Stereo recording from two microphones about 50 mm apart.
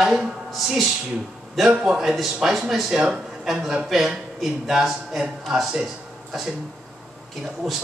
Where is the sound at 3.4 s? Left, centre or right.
Centre.